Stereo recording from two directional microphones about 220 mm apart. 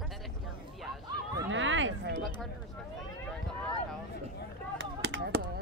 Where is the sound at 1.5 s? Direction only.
60° right (ahead or behind).